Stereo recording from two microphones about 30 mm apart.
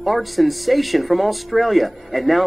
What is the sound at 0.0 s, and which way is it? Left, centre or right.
Speech, centre.